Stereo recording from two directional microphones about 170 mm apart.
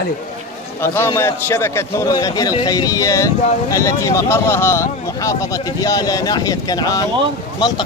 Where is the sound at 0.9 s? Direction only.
15° left (ahead or behind).